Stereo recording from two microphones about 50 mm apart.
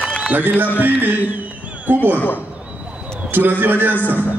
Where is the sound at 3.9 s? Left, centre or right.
Left.